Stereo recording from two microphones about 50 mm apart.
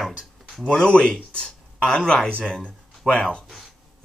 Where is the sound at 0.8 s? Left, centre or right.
Centre.